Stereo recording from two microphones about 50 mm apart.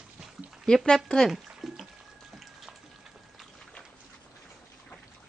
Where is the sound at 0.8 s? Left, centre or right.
Centre.